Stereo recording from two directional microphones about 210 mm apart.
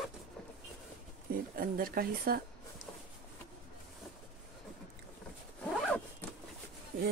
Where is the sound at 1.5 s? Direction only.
45° right (ahead or behind).